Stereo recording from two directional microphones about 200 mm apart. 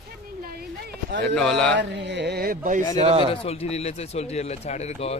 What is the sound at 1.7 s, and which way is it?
Speech, 60° right (ahead or behind).